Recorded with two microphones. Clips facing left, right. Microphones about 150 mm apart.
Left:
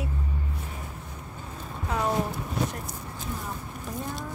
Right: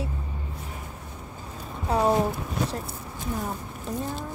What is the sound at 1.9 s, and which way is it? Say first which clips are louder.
Speech: right 5 dB; 35° right (ahead or behind).